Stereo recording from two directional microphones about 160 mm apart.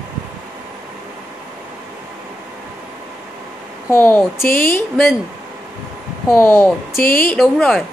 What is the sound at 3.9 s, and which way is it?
A woman's voice, 10° left (ahead or behind).